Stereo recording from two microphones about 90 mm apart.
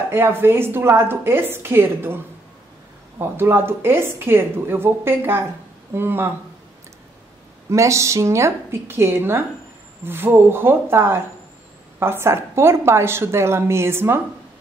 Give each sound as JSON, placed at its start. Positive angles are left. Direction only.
{"t": 0.1, "sound": "a woman's voice", "side_deg": -25}
{"t": 3.2, "sound": "a woman's voice", "side_deg": -25}
{"t": 7.7, "sound": "a woman's voice", "side_deg": -35}